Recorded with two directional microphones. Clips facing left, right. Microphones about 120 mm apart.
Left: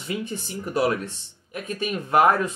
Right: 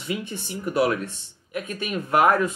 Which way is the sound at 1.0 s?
35° left (ahead or behind).